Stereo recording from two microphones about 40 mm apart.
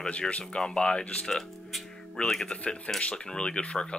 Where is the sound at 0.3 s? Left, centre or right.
Left.